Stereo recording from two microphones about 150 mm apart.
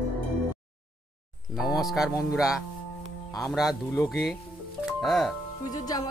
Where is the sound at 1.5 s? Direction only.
Centre (ahead or behind).